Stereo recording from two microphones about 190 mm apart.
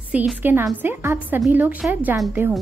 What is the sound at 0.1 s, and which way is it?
A woman's voice, 10° right (ahead or behind).